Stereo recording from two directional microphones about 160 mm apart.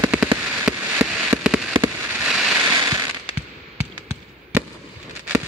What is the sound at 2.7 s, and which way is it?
Ratchet, 20° right (ahead or behind).